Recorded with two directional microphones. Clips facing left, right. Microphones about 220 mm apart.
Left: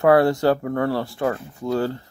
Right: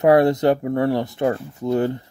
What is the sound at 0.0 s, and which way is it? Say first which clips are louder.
Speech: right 1 dB; 20° right (ahead or behind).